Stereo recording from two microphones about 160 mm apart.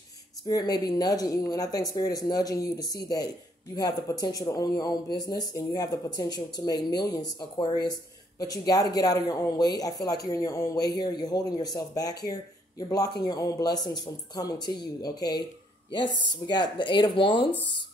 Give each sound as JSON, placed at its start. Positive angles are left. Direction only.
{"t": 0.5, "sound": "speech", "side_deg": 25}